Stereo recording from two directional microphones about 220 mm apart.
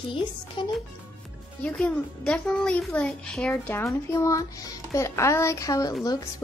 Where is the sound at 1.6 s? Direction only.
5° left (ahead or behind).